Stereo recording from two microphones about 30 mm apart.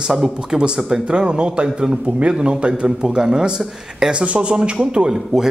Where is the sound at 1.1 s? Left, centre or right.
Right.